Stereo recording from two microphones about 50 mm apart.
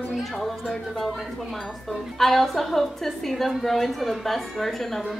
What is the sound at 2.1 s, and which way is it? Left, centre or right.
A woman's voice, centre.